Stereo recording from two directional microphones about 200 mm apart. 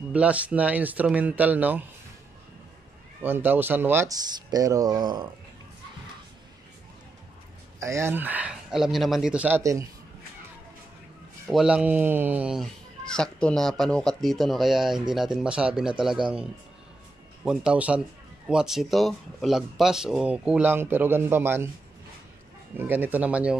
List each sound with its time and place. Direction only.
0.1 s speech: 5° right (ahead or behind)
3.2 s speech: 10° right (ahead or behind)
7.8 s speech: 15° right (ahead or behind)
11.4 s speech: 5° right (ahead or behind)
17.5 s speech: 5° right (ahead or behind)
22.8 s speech: 10° right (ahead or behind)